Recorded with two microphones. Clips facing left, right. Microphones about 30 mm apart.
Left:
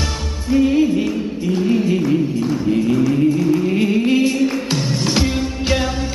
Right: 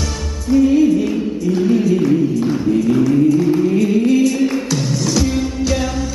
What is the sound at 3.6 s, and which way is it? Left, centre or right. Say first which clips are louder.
Music: right 2 dB; left.